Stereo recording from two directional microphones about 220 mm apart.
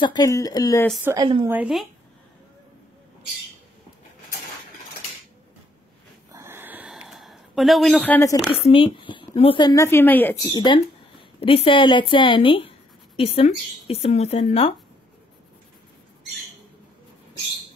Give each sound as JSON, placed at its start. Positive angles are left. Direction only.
{"t": 0.0, "sound": "speech", "side_deg": 20}
{"t": 1.0, "sound": "a woman's voice", "side_deg": -20}
{"t": 1.5, "sound": "speech", "side_deg": -5}
{"t": 6.3, "sound": "a sound", "side_deg": -10}
{"t": 8.6, "sound": "speech", "side_deg": 25}